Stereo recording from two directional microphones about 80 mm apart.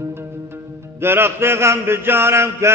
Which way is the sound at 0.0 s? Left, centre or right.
Right.